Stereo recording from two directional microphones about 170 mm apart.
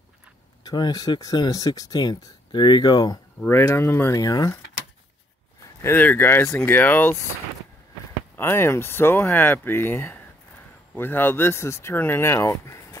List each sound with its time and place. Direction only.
0.7 s speech: 25° left (ahead or behind)
3.4 s speech: 15° left (ahead or behind)
5.8 s speech: 10° left (ahead or behind)
8.4 s speech: 15° left (ahead or behind)